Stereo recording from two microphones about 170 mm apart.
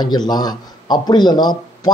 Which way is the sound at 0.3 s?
25° left (ahead or behind).